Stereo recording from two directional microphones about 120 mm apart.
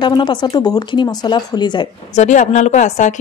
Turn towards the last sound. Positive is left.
turn(degrees=90)